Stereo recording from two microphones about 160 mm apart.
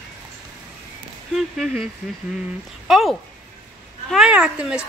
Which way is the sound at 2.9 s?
Centre (ahead or behind).